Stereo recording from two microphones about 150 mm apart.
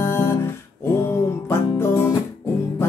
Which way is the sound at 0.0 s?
15° left (ahead or behind).